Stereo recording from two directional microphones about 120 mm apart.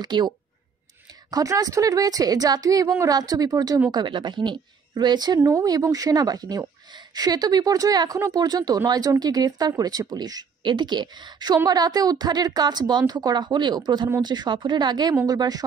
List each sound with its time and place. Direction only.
0.0 s speech: 40° right (ahead or behind)
1.3 s speech: 30° right (ahead or behind)